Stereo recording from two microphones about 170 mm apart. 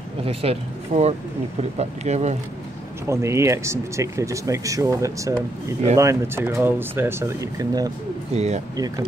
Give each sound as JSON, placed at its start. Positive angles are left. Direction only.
{"t": 0.2, "sound": "speech", "side_deg": -35}
{"t": 3.1, "sound": "speech", "side_deg": -15}
{"t": 8.3, "sound": "speech", "side_deg": -40}
{"t": 8.7, "sound": "speech", "side_deg": -20}